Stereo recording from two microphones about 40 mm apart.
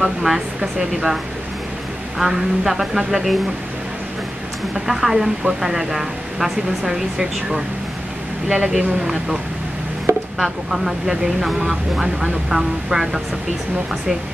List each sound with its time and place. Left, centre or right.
0.0 s speech: centre
4.7 s speech: centre
10.1 s a sound: right
10.4 s speech: centre